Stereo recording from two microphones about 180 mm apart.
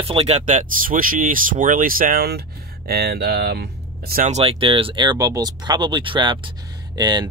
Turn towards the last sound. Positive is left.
turn(degrees=-25)  # may be behind; listen again after turning